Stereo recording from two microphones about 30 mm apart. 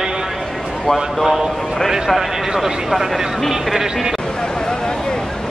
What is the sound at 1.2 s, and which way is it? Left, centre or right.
Speech, centre.